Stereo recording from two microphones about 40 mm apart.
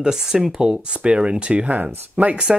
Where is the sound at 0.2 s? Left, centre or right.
Centre.